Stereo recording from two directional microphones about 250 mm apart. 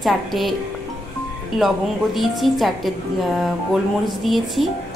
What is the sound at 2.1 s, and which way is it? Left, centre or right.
Speech, centre.